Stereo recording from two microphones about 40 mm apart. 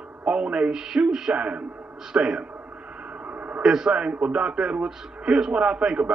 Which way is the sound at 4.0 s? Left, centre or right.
Right.